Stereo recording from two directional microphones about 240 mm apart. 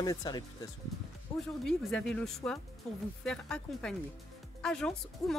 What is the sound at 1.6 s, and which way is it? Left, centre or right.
Speech, centre.